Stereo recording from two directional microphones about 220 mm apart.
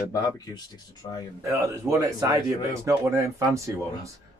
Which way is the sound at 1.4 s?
15° right (ahead or behind).